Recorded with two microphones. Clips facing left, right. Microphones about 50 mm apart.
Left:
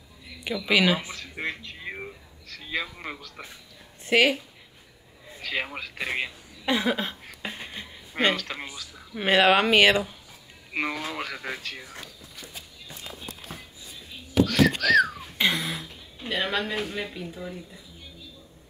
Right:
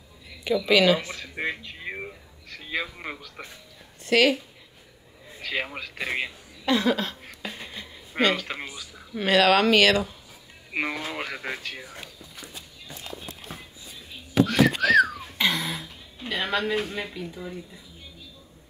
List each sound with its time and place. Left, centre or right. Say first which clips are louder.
0.7 s speech: right 2 dB; centre
1.1 s a man's voice: right 2 dB; centre
4.0 s speech: right 1 dB; centre
5.4 s speech: even; centre
6.6 s a sound: right 2 dB; centre
8.4 s a man's voice: right 1 dB; centre
9.2 s speech: even; left
10.7 s a man's voice: even; centre
14.4 s whistling: right 1 dB; right
14.9 s a sound: right 1 dB; centre
15.3 s speech: even; centre